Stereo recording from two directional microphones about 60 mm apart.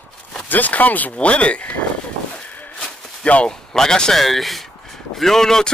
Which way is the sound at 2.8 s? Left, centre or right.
Centre.